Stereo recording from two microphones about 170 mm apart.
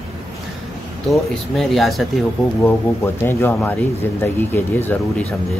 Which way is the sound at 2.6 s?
15° left (ahead or behind).